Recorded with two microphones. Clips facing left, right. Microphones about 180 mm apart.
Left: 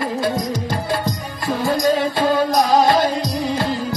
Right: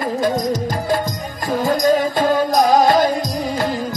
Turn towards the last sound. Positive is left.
turn(degrees=-45)  # may be behind; listen again after turning